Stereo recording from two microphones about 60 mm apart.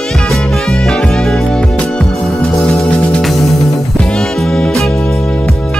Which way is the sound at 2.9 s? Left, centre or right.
Centre.